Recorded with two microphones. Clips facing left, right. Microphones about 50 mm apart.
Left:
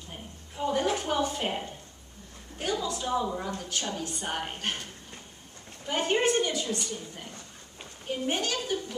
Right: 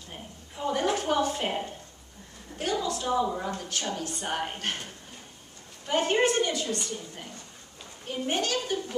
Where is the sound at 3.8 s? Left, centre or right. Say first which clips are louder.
Even; centre.